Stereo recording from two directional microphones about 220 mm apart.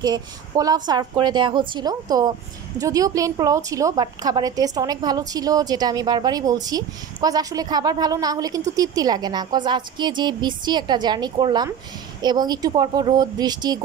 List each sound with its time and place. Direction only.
0.0 s a woman's voice: 15° right (ahead or behind)